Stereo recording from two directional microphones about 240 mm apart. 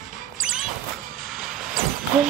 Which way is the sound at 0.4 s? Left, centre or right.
Centre.